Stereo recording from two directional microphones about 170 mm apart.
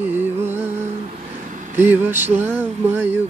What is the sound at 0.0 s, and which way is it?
Music, 10° right (ahead or behind).